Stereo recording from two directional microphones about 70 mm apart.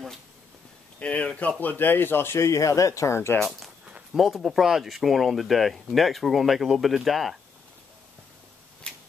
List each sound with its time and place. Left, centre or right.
0.9 s speech: centre; by 3.2 s left
3.2 s speech: left
3.4 s speech: centre